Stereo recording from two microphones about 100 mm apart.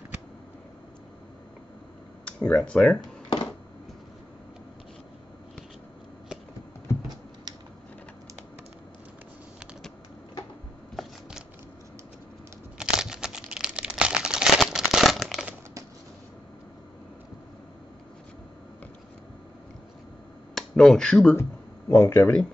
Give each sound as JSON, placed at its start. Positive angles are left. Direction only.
{"t": 2.2, "sound": "speech", "side_deg": 15}
{"t": 3.0, "sound": "a sound", "side_deg": 45}
{"t": 11.0, "sound": "scissors", "side_deg": 0}
{"t": 12.7, "sound": "crumpling", "side_deg": -5}
{"t": 20.5, "sound": "a sound", "side_deg": 5}
{"t": 22.0, "sound": "speech", "side_deg": 20}